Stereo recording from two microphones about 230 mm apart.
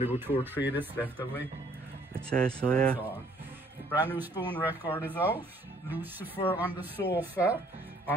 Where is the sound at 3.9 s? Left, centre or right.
Centre.